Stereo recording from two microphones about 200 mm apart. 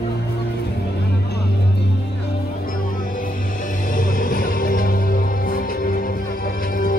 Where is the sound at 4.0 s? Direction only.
40° left (ahead or behind).